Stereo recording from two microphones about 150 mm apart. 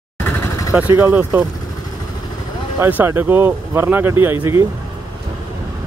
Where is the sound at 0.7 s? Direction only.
10° right (ahead or behind).